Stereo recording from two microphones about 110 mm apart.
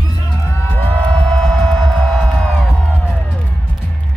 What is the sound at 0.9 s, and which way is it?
Music, 10° left (ahead or behind).